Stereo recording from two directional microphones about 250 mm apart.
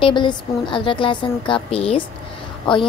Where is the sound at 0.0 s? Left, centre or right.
Centre.